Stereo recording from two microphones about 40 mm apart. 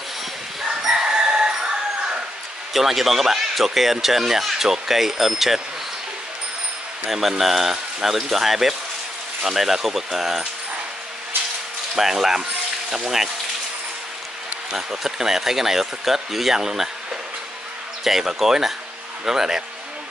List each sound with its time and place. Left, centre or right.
0.7 s chicken: centre
2.7 s speech: centre
7.1 s speech: centre
11.9 s speech: centre
14.9 s speech: centre
18.0 s speech: centre